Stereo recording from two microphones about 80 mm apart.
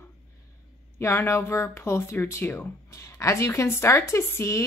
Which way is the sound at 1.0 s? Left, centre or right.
Left.